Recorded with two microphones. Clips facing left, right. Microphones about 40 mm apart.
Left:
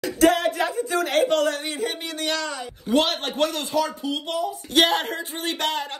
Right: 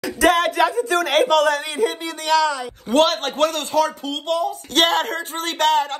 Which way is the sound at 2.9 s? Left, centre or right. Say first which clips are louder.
Right 4 dB; right.